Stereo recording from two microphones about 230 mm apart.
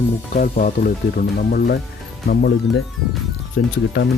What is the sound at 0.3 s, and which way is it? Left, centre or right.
Speech, left.